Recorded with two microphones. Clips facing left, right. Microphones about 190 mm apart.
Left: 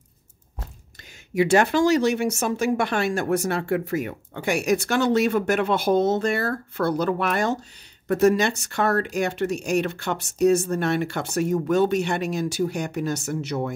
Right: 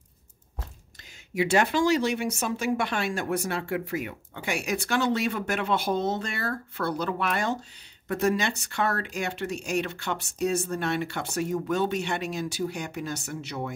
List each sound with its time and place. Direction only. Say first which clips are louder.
1.3 s speech: left 5 dB; 45° left (ahead or behind)